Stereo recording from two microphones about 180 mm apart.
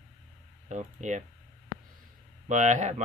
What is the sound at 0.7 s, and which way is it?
Speech, 45° right (ahead or behind).